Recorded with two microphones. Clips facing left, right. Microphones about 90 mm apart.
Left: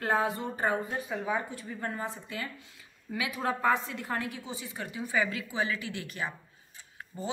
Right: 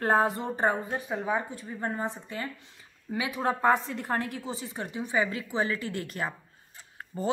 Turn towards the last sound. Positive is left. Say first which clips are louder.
# right 5 dB
turn(degrees=-50)  # may be behind; listen again after turning